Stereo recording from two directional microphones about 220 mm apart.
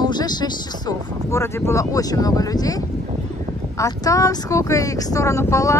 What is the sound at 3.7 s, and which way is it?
Speech, 15° left (ahead or behind).